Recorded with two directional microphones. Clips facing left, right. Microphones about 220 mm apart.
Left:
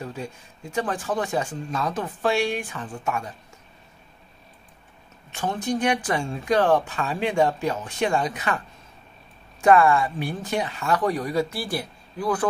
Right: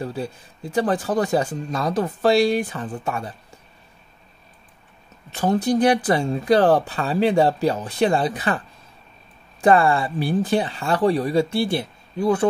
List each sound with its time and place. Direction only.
0.0 s speech: 35° right (ahead or behind)
5.3 s speech: 35° right (ahead or behind)
9.6 s speech: 30° right (ahead or behind)